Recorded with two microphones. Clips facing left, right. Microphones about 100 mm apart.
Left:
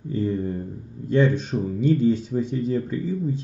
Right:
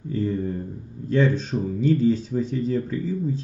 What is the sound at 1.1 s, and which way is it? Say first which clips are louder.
Speech: left 1 dB; 15° left (ahead or behind).